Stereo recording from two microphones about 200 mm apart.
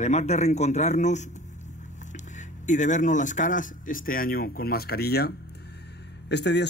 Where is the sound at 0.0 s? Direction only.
35° left (ahead or behind).